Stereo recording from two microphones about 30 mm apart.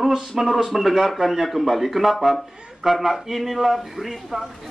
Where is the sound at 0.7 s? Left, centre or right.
Centre.